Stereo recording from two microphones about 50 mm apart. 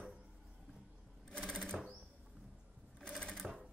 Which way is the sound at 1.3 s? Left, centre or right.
Centre.